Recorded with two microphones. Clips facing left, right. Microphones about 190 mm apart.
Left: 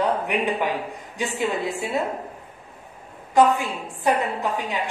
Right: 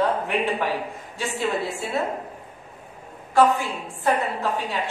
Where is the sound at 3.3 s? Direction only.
15° left (ahead or behind).